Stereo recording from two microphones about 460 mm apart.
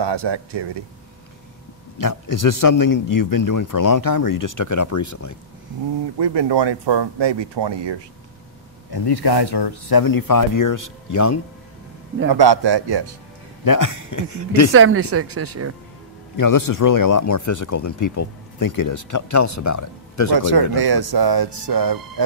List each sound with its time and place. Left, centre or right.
0.0 s speech: right
2.0 s a man's voice: left
6.1 s speech: right
8.9 s a man's voice: left
12.3 s speech: right
13.7 s speech: left
14.7 s a woman's voice: right
16.3 s speech: left
20.3 s speech: right